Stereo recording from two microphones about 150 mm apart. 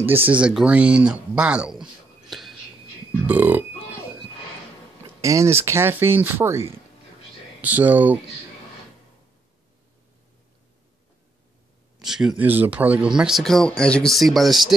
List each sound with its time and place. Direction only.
0.0 s speech: 15° right (ahead or behind)
3.3 s burping: 10° right (ahead or behind)
5.2 s speech: 20° right (ahead or behind)
12.0 s speech: 5° right (ahead or behind)